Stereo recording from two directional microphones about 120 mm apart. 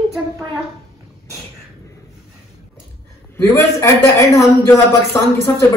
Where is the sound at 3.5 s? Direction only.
25° left (ahead or behind).